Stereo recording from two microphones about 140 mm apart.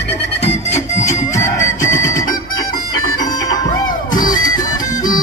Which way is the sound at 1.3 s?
20° left (ahead or behind).